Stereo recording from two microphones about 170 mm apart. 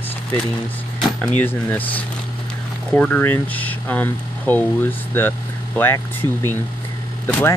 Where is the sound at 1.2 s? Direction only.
10° left (ahead or behind).